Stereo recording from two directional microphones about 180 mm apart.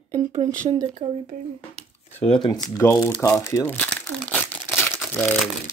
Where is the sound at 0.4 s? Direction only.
45° right (ahead or behind).